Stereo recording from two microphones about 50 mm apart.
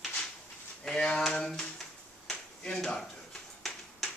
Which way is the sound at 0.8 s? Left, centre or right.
Centre.